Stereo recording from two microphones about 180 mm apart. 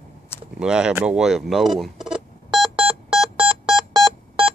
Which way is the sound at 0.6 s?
5° right (ahead or behind).